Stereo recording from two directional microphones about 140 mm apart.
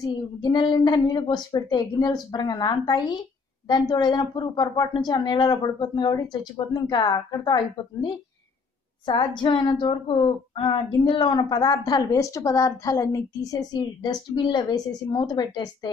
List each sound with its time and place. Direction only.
0.0 s a woman's voice: 30° left (ahead or behind)